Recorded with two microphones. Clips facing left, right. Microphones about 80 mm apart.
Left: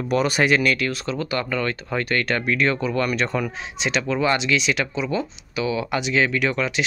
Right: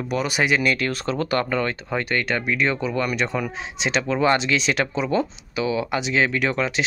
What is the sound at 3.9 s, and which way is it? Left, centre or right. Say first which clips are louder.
Speech: right 2 dB; right.